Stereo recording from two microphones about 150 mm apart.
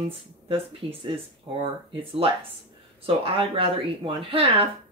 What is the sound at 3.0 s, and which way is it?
Speech, 40° right (ahead or behind).